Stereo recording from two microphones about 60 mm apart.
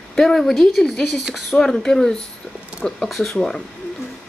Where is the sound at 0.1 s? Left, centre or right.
Centre.